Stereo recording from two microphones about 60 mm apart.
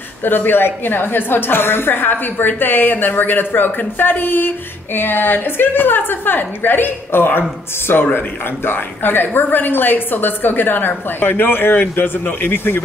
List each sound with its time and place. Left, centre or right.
0.2 s a woman's voice: left